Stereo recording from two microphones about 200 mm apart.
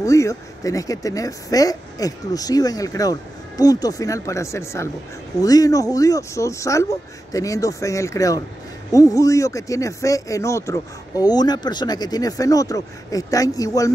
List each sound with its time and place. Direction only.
0.0 s speech: 15° left (ahead or behind)